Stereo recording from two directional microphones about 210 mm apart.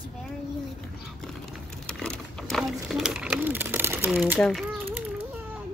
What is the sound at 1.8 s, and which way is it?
Speech, centre (ahead or behind).